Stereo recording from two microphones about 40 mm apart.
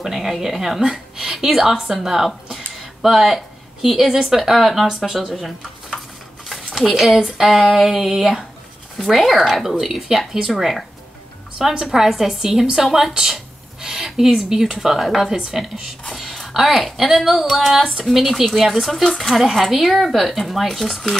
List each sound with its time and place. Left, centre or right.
0.0 s a woman's voice: centre
4.8 s a woman's voice: centre
6.5 s a sound: centre
7.2 s a woman's voice: centre
11.5 s a woman's voice: centre
18.3 s speech: centre